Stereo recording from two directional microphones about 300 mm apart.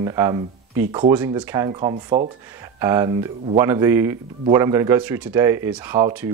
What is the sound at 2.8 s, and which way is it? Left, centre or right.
Speech, centre.